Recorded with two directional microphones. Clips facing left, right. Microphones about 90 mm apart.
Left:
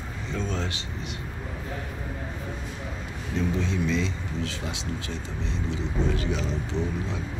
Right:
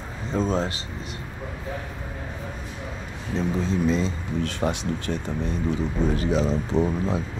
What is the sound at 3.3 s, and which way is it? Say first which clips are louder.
Speech: right 3 dB; 40° right (ahead or behind).